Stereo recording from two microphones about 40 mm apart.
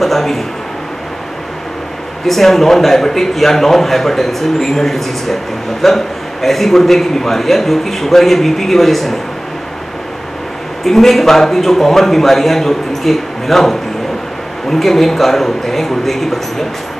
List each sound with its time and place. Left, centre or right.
0.0 s a man's voice: centre
2.2 s a man's voice: centre
10.8 s a man's voice: centre